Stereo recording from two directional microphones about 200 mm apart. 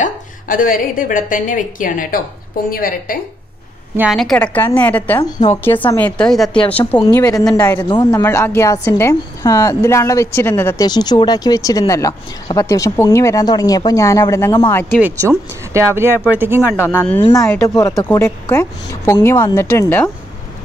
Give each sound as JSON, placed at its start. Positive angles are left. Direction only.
{"t": 0.0, "sound": "a woman's voice", "side_deg": 45}
{"t": 3.9, "sound": "a woman's voice", "side_deg": -5}
{"t": 7.4, "sound": "a woman's voice", "side_deg": 5}
{"t": 7.9, "sound": "a woman's voice", "side_deg": 15}
{"t": 14.9, "sound": "speech", "side_deg": -10}
{"t": 16.7, "sound": "a woman's voice", "side_deg": 10}